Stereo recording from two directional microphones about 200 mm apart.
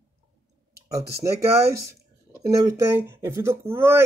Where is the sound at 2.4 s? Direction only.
15° right (ahead or behind).